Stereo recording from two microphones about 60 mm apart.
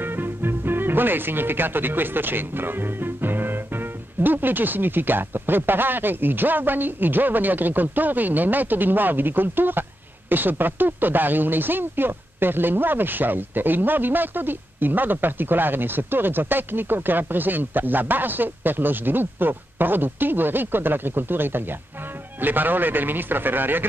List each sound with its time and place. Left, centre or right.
0.0 s speech: right